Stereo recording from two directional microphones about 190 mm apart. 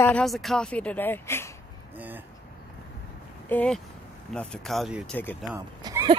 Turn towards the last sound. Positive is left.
turn(degrees=-15)  # may be behind; listen again after turning